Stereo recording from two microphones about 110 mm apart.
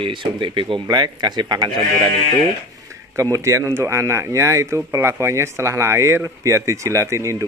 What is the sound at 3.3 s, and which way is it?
Speech, 25° right (ahead or behind).